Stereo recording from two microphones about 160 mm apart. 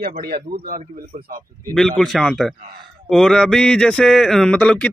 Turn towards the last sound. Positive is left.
turn(degrees=10)  # may be behind; listen again after turning